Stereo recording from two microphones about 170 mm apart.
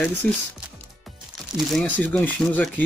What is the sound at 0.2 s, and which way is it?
Speech, 5° left (ahead or behind).